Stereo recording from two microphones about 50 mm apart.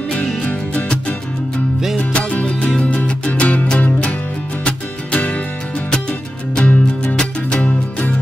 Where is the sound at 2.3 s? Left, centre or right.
Left.